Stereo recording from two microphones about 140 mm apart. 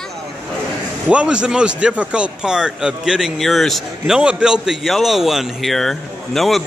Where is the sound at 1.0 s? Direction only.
5° right (ahead or behind).